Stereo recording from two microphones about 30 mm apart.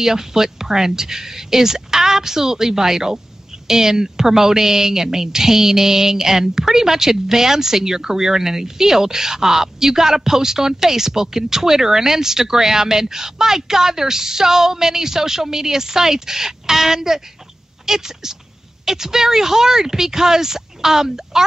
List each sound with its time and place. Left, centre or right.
0.0 s speech: centre